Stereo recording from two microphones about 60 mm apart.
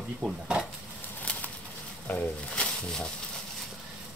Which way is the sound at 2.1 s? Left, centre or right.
Centre.